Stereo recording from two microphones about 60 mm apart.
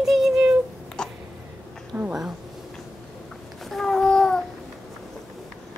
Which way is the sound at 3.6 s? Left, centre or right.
Centre.